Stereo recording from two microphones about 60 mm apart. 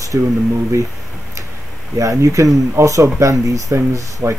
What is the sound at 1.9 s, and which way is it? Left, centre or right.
Speech, right.